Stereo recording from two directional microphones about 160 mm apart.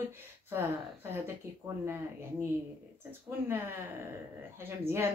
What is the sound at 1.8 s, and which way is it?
Speech, 15° right (ahead or behind).